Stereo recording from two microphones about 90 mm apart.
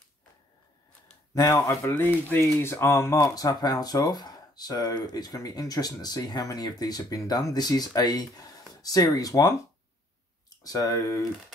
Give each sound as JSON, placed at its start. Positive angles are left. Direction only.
{"t": 1.5, "sound": "speech", "side_deg": 30}